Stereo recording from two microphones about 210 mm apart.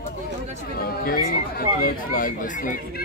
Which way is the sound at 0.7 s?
45° left (ahead or behind).